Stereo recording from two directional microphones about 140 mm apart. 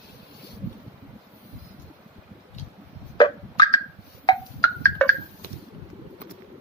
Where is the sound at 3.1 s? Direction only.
35° left (ahead or behind).